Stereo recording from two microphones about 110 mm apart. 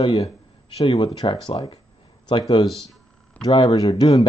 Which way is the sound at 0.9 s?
45° left (ahead or behind).